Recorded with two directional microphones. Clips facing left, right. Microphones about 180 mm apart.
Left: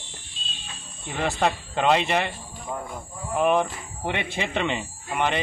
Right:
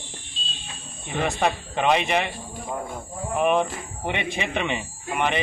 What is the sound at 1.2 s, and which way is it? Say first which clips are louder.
Speech: even; 15° right (ahead or behind).